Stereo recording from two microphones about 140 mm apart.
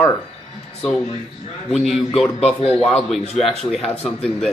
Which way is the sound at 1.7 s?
5° left (ahead or behind).